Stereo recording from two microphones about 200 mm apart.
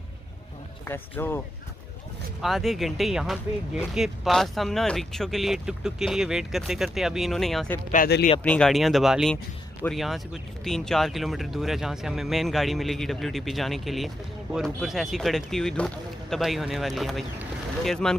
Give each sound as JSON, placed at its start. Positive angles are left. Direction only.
{"t": 0.8, "sound": "speech", "side_deg": 10}
{"t": 2.4, "sound": "speech", "side_deg": 0}
{"t": 7.9, "sound": "speech", "side_deg": 45}
{"t": 8.5, "sound": "speech", "side_deg": 5}